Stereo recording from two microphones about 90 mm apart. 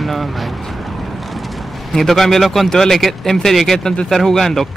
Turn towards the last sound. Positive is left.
turn(degrees=5)  # may be behind; listen again after turning